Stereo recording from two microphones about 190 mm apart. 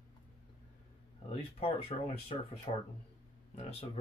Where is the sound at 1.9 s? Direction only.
35° left (ahead or behind).